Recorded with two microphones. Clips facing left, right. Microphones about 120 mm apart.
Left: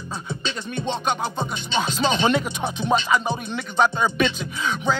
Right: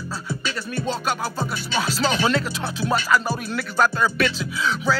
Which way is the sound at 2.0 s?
20° left (ahead or behind).